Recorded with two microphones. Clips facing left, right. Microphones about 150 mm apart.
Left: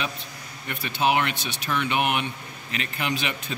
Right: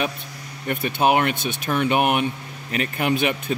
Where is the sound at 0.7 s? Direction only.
50° right (ahead or behind).